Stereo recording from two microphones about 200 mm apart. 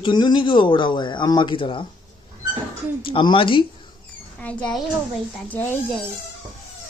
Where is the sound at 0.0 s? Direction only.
20° left (ahead or behind).